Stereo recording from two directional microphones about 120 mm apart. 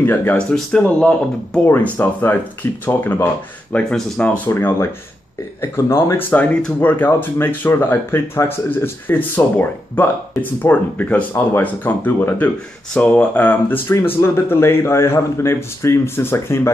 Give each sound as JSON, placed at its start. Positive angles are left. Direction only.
{"t": 0.0, "sound": "speech", "side_deg": 20}
{"t": 0.5, "sound": "speech", "side_deg": 10}